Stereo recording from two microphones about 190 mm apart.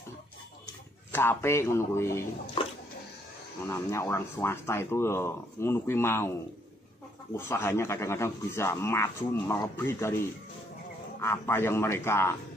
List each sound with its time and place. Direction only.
1.1 s speech: 15° left (ahead or behind)
2.6 s bathtub: 30° left (ahead or behind)
3.6 s speech: 15° left (ahead or behind)
7.3 s speech: 10° left (ahead or behind)